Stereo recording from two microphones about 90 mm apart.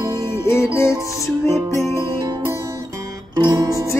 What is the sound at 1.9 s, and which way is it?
Music, 35° right (ahead or behind).